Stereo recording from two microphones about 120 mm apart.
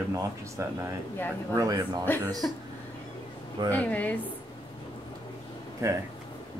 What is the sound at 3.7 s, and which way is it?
Speech, 10° left (ahead or behind).